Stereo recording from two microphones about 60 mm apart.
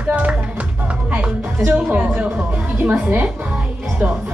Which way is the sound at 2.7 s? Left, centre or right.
Right.